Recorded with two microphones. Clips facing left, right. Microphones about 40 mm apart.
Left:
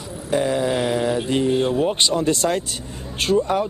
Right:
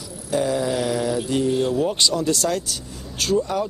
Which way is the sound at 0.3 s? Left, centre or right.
Left.